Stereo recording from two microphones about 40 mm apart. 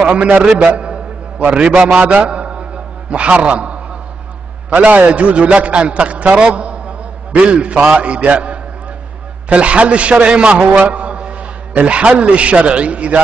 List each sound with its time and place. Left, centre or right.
0.0 s a man's voice: right